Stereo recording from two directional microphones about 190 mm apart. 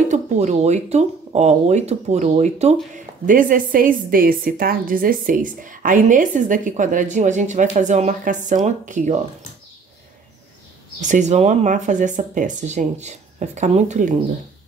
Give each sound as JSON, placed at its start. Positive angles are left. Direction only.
{"t": 0.1, "sound": "a woman's voice", "side_deg": -35}
{"t": 11.0, "sound": "speech", "side_deg": -40}